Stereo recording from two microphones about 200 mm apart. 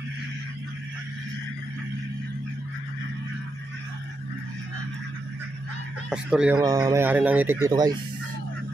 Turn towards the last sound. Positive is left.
turn(degrees=-20)  # may be behind; listen again after turning